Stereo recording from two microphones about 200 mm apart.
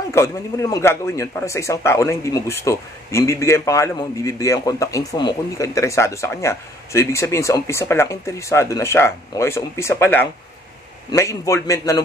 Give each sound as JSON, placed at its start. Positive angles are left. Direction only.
{"t": 0.1, "sound": "speech", "side_deg": 15}